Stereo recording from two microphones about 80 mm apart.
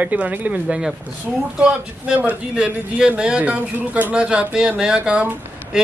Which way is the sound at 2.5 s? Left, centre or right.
Centre.